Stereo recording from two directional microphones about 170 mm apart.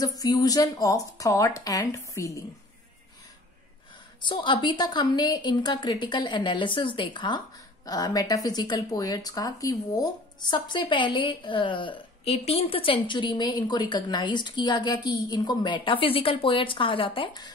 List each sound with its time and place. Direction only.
0.0 s a woman's voice: 20° left (ahead or behind)
4.2 s a woman's voice: 25° left (ahead or behind)